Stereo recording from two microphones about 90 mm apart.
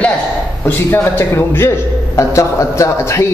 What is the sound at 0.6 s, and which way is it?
A man's voice, 25° left (ahead or behind).